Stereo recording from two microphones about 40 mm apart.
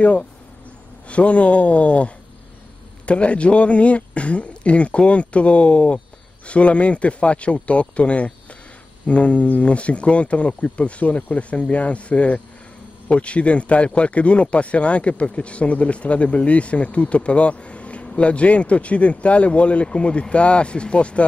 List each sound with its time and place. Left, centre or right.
1.0 s speech: left